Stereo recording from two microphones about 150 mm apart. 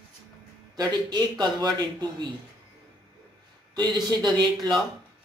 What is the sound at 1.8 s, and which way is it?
Speech, 30° right (ahead or behind).